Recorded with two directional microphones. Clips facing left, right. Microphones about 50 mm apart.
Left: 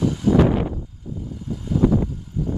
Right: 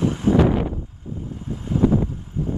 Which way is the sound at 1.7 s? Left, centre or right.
Right.